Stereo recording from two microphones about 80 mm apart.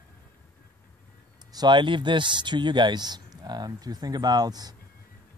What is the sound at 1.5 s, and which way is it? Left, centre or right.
Speech, right.